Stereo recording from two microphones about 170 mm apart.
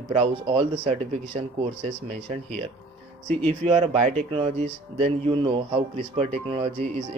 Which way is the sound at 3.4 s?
35° right (ahead or behind).